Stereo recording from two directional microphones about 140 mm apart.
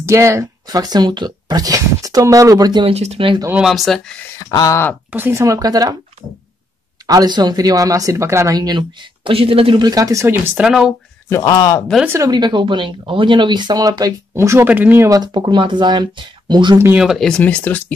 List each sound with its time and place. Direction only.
0.0 s speech: 20° right (ahead or behind)
2.9 s speech: 50° right (ahead or behind)
3.6 s speech: centre (ahead or behind)
4.4 s speech: 25° left (ahead or behind)
5.1 s speech: 15° right (ahead or behind)
7.1 s speech: 30° right (ahead or behind)
9.8 s speech: 25° right (ahead or behind); by 10.9 s 5° right (ahead or behind)
11.2 s speech: 25° left (ahead or behind)
12.1 s speech: 25° right (ahead or behind)
16.7 s speech: 20° right (ahead or behind)
17.0 s speech: centre (ahead or behind)